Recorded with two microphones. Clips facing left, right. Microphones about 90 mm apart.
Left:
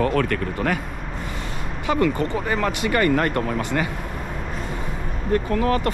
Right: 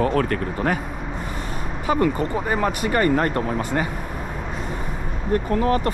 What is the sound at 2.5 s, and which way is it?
Speech, 45° right (ahead or behind).